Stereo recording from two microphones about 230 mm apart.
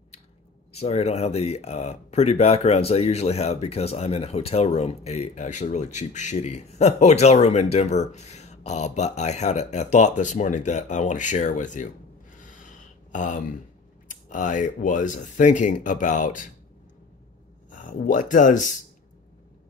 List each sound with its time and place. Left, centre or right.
0.7 s speech: left
13.1 s speech: left
17.6 s speech: left